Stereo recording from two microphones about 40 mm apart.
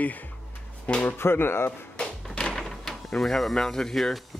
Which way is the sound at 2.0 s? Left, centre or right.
Left.